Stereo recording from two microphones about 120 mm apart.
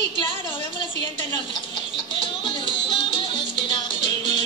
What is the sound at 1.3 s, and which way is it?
Music, 40° left (ahead or behind).